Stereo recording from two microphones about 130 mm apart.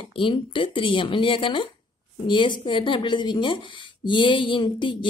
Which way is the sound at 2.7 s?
40° left (ahead or behind).